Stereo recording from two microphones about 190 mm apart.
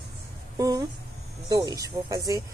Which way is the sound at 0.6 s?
20° right (ahead or behind).